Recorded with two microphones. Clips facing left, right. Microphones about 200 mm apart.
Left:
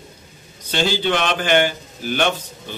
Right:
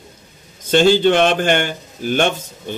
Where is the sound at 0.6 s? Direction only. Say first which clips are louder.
Right 9 dB; 50° right (ahead or behind).